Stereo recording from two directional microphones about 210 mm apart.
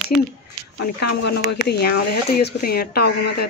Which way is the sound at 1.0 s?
50° left (ahead or behind).